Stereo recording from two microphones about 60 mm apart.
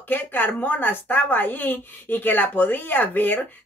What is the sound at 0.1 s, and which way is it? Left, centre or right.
A woman's voice, left.